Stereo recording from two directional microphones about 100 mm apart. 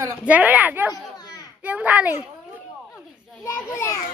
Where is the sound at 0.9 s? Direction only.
40° left (ahead or behind).